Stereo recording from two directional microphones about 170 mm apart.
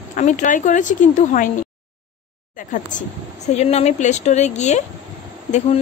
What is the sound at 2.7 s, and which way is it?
A woman's voice, 45° left (ahead or behind).